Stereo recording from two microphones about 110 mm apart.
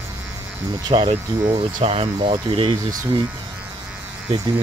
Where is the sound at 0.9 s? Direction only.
55° right (ahead or behind).